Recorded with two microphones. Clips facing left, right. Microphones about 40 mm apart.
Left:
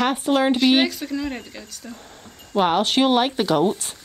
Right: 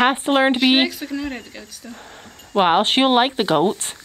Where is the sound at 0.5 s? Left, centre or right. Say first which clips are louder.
Right 1 dB; centre.